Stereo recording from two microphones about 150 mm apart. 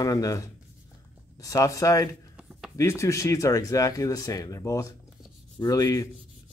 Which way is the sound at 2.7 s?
20° left (ahead or behind).